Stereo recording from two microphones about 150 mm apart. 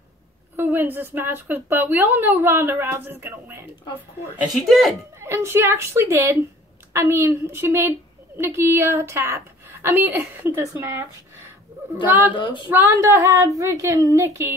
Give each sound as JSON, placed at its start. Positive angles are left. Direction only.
{"t": 0.6, "sound": "a woman's voice", "side_deg": -15}
{"t": 4.6, "sound": "speech", "side_deg": 0}
{"t": 5.2, "sound": "a woman's voice", "side_deg": -20}